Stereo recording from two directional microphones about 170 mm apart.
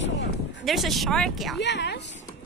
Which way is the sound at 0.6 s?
Centre (ahead or behind).